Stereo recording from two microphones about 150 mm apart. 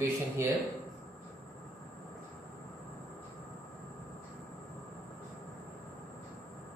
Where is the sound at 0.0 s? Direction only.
15° right (ahead or behind).